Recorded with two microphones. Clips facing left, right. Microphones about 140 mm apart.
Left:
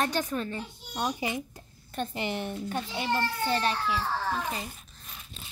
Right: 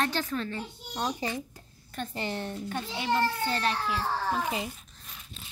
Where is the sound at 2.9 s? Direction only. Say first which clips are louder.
Right 3 dB; 40° left (ahead or behind).